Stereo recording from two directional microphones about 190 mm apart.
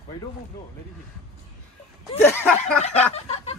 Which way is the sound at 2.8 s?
35° left (ahead or behind).